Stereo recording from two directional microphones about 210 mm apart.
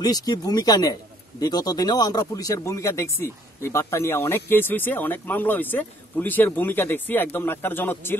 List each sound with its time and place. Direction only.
0.0 s speech: 20° left (ahead or behind)